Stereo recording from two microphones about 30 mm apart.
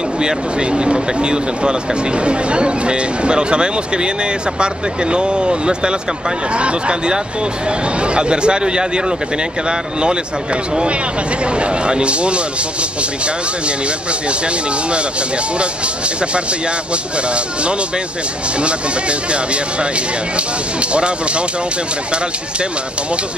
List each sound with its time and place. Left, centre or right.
0.2 s speech: right
16.9 s speech: right
20.9 s speech: right